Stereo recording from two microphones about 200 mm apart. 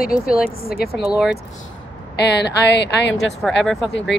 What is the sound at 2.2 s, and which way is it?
Speech, 60° left (ahead or behind).